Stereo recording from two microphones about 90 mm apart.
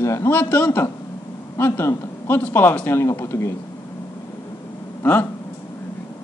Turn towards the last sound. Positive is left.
turn(degrees=20)  # may be behind; listen again after turning